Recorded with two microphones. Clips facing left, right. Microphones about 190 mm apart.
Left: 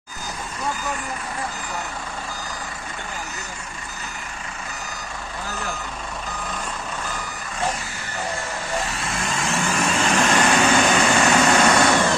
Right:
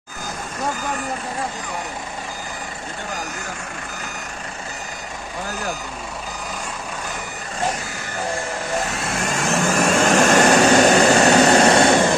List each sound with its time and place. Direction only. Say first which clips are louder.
9.0 s vehicle: right 3 dB; 45° right (ahead or behind); by 12.1 s 25° right (ahead or behind)